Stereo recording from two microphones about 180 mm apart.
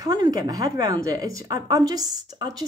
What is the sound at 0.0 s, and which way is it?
Speech, 20° right (ahead or behind).